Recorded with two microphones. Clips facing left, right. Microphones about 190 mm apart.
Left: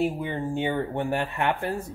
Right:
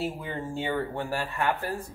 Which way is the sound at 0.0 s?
20° left (ahead or behind).